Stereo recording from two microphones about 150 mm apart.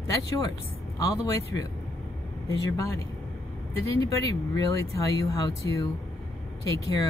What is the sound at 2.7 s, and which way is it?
Speech, 20° left (ahead or behind).